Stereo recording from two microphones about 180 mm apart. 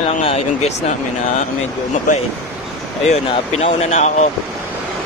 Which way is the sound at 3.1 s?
35° left (ahead or behind).